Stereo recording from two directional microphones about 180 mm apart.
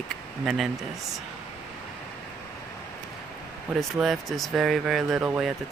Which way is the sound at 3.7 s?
Centre (ahead or behind).